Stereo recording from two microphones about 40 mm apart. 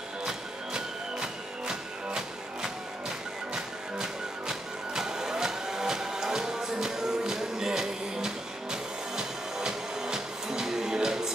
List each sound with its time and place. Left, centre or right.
0.2 s music: centre